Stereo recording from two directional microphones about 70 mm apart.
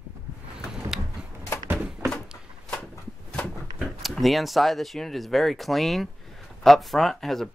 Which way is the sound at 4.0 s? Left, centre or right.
Centre.